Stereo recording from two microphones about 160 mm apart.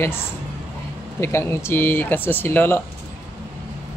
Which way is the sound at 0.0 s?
15° left (ahead or behind).